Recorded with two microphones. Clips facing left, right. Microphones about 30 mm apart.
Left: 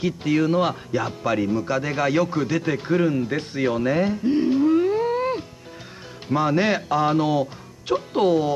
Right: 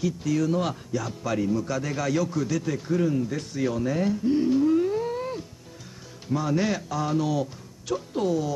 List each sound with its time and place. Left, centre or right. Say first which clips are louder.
0.0 s a man's voice: left 4 dB; left